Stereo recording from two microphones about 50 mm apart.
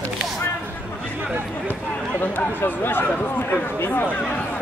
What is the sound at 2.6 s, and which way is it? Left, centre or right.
Speech, left.